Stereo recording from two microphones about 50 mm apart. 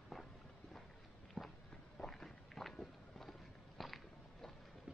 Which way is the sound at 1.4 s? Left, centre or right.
Left.